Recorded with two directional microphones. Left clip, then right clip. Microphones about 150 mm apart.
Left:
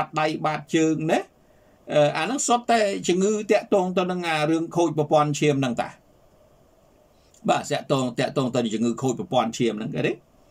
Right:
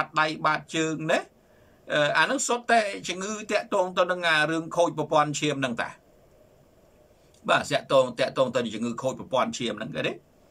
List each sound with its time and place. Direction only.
0.1 s speech: 25° left (ahead or behind)
7.4 s speech: 30° left (ahead or behind)